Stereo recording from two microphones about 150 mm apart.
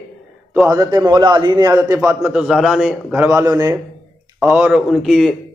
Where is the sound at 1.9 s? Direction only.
20° right (ahead or behind).